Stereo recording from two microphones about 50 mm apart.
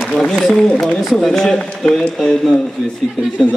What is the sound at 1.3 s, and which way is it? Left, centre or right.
A man's voice, centre.